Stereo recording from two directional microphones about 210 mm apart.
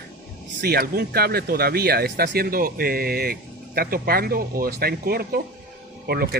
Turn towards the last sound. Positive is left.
turn(degrees=-50)  # may be behind; listen again after turning